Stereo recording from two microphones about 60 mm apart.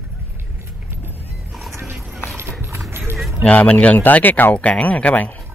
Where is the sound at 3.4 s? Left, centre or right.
Left.